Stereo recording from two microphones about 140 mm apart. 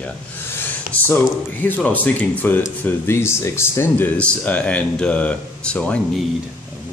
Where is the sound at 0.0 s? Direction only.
15° left (ahead or behind).